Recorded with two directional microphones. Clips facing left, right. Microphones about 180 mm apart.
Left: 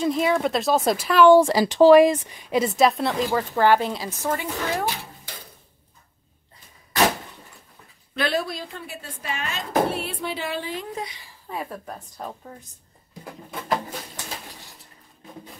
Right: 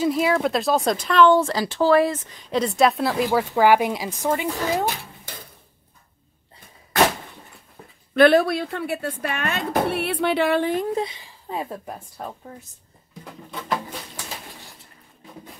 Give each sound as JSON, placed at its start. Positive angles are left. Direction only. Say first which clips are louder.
{"t": 0.0, "sound": "speech", "louder": "right 1 dB", "side_deg": -5}
{"t": 8.1, "sound": "speech", "louder": "right 10 dB", "side_deg": -55}
{"t": 11.0, "sound": "speech", "louder": "right 7 dB", "side_deg": -25}